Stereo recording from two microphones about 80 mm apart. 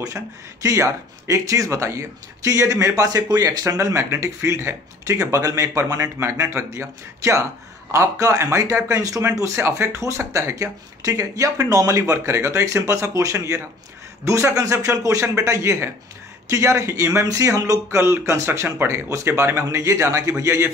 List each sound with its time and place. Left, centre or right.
0.0 s speech: right